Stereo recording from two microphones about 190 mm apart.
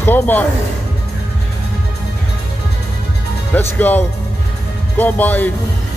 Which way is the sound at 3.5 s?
10° left (ahead or behind).